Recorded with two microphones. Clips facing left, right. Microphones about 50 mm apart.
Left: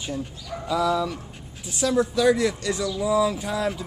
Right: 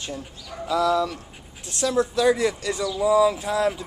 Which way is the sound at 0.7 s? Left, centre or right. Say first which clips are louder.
Right 2 dB; centre.